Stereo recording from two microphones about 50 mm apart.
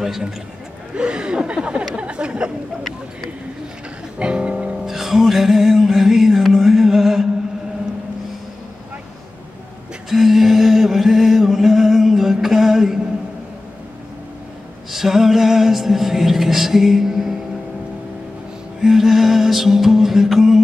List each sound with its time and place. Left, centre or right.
0.9 s speech: centre
4.2 s music: right
4.8 s music: centre
10.0 s mantra: centre
14.9 s music: centre
18.8 s music: centre